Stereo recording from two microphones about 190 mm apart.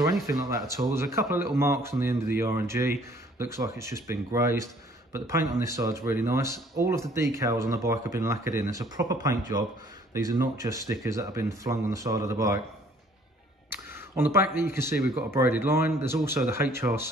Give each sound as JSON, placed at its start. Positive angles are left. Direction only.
{"t": 0.3, "sound": "speech", "side_deg": -15}
{"t": 13.7, "sound": "a sound", "side_deg": -10}
{"t": 14.5, "sound": "speech", "side_deg": -15}